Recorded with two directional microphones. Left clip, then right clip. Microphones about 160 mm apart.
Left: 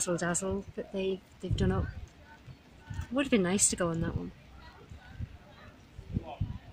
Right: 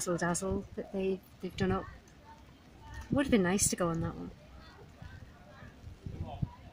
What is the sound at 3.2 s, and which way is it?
Speech, centre (ahead or behind).